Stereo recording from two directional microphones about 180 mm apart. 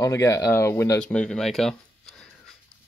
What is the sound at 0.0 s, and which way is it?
Speech, 15° left (ahead or behind).